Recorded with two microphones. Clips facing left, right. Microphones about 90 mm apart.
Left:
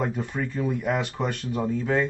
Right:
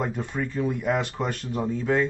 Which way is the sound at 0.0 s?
Centre (ahead or behind).